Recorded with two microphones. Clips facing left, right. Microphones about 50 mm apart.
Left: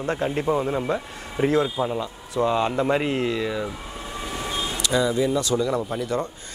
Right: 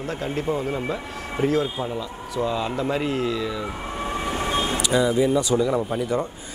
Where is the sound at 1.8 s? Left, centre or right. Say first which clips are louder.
Left 3 dB; centre.